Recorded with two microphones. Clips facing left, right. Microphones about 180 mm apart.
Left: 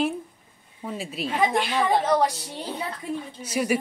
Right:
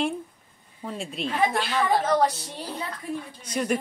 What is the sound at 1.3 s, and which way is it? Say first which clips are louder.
A woman's voice: left 2 dB; 15° left (ahead or behind).